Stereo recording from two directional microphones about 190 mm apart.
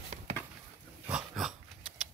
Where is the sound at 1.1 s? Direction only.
Centre (ahead or behind).